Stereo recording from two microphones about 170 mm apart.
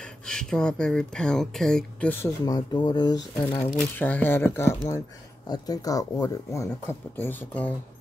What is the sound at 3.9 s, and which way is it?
Speech, 10° left (ahead or behind).